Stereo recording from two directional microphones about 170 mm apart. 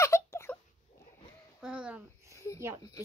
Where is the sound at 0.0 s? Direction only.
15° left (ahead or behind).